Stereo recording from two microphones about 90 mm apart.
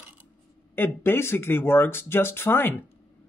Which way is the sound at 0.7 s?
25° left (ahead or behind).